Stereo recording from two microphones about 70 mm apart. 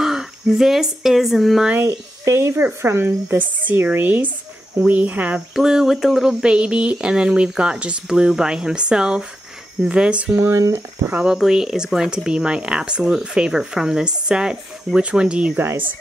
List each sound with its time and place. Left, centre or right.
0.0 s speech: centre
1.9 s speech: right
5.5 s speech: centre
10.3 s speech: right
11.2 s speech: centre
15.6 s speech: right